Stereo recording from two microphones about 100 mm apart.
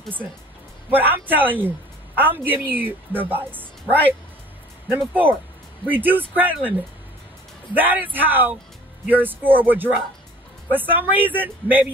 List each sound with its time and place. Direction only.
0.8 s a woman's voice: 20° right (ahead or behind)
4.8 s a woman's voice: 20° right (ahead or behind)
7.7 s a woman's voice: 20° right (ahead or behind)